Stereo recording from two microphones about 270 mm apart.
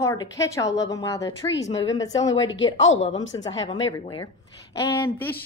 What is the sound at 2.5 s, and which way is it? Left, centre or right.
Speech, left.